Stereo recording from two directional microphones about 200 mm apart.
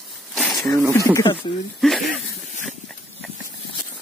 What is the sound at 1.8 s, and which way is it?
Speech, centre (ahead or behind).